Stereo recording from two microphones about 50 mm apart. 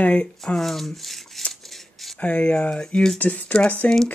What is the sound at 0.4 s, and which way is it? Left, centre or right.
Speech, centre.